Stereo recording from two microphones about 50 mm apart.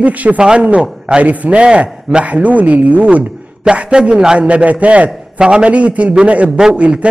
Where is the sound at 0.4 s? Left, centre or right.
Centre.